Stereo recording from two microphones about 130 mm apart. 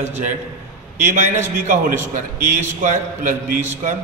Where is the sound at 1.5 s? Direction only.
90° right.